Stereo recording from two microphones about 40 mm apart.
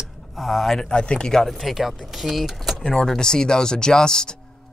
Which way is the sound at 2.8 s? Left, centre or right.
Centre.